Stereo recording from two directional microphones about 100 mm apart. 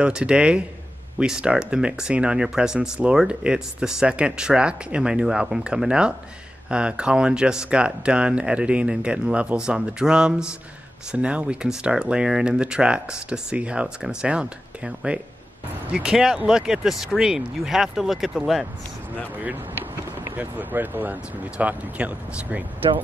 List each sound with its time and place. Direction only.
0.0 s speech: 10° right (ahead or behind)
20.3 s speech: 15° right (ahead or behind)